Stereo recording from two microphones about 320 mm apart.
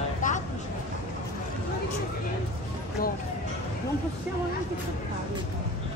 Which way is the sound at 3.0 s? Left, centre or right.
Left.